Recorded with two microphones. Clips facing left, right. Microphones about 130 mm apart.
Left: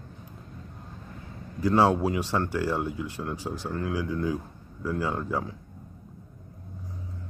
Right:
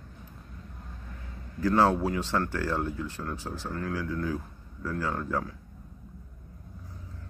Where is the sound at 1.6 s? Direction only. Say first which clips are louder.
Left 2 dB; 15° left (ahead or behind).